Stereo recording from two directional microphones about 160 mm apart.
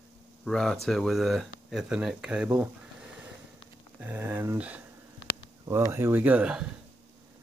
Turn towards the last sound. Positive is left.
turn(degrees=-5)  # may be behind; listen again after turning